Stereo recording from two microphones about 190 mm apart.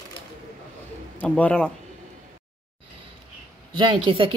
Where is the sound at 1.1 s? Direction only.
5° left (ahead or behind).